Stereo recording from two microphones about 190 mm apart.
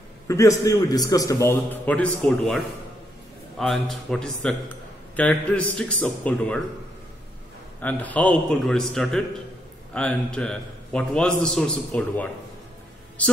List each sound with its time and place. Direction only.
0.3 s a man's voice: 15° left (ahead or behind)
7.8 s a man's voice: 10° left (ahead or behind)